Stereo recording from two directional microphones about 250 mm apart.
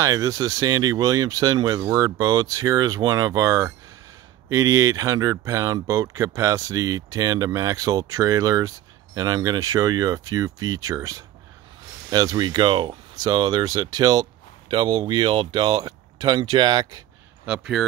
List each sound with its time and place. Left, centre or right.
0.0 s speech: centre
17.5 s speech: centre